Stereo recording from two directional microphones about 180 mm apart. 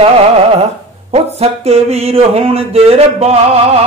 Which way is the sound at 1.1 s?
35° right (ahead or behind).